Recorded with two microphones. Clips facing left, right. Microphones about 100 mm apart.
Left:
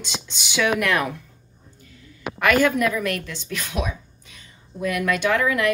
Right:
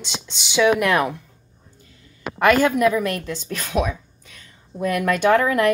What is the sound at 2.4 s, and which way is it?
A woman's voice, 30° right (ahead or behind).